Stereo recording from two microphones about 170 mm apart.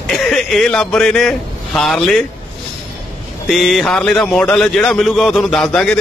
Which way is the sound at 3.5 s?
Centre (ahead or behind).